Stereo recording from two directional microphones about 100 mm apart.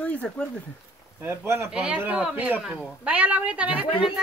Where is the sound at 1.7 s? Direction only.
10° right (ahead or behind).